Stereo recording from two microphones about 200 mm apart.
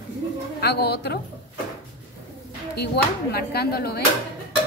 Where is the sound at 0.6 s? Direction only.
55° left (ahead or behind).